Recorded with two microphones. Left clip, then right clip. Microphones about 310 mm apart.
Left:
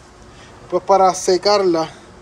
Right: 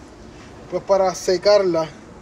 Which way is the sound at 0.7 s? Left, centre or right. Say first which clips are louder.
Left 5 dB; centre.